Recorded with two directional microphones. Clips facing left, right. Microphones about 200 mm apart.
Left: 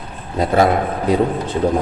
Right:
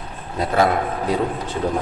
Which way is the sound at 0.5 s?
25° left (ahead or behind).